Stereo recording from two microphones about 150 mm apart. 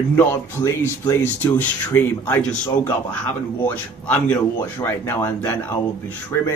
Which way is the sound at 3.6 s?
10° left (ahead or behind).